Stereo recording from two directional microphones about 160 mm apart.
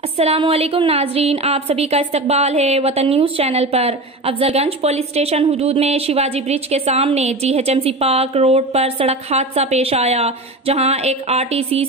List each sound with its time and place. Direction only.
0.2 s a woman's voice: 40° right (ahead or behind)